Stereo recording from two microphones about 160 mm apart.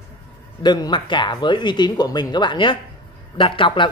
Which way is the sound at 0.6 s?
25° left (ahead or behind).